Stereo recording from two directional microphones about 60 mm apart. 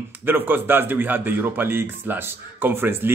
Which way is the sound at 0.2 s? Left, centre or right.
Right.